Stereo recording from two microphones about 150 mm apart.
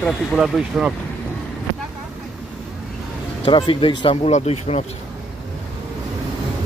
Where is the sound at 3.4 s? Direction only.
35° left (ahead or behind).